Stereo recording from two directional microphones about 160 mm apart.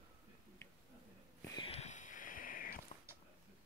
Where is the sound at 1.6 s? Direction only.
40° left (ahead or behind); by 2.8 s 60° left (ahead or behind).